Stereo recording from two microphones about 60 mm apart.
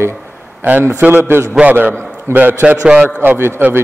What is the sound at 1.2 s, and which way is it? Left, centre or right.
Speech, right.